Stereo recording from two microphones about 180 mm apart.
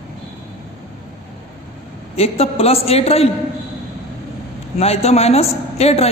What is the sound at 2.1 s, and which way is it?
A man's voice, 35° left (ahead or behind).